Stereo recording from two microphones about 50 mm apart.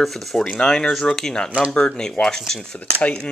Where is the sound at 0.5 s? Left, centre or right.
Centre.